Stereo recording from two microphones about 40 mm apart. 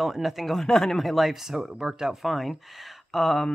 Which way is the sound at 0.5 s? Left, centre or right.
Centre.